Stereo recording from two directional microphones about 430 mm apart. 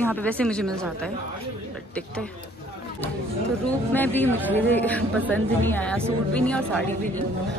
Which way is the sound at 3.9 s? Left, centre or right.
Centre.